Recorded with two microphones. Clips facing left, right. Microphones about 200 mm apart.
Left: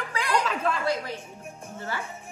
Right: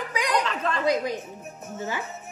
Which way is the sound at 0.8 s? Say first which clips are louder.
Right 4 dB; 15° right (ahead or behind).